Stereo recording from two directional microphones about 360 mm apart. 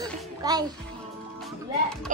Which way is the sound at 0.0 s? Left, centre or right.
Centre.